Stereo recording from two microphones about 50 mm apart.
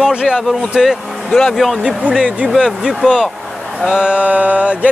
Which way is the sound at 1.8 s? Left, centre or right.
Centre.